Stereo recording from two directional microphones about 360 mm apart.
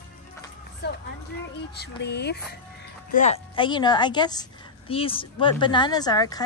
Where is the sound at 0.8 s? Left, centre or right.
Left; by 6.4 s centre.